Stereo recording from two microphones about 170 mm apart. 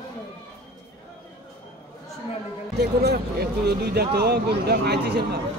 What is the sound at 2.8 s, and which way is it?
Speech, 70° right (ahead or behind).